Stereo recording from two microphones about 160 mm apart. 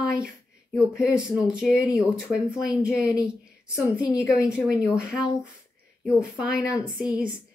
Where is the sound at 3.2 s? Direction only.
5° right (ahead or behind).